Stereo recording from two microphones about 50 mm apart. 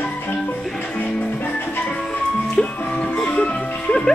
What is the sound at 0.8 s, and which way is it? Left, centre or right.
Music, left.